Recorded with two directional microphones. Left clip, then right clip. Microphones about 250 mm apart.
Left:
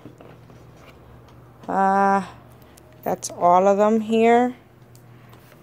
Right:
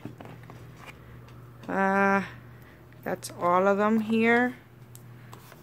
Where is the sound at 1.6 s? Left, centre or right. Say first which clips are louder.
Left 6 dB; centre.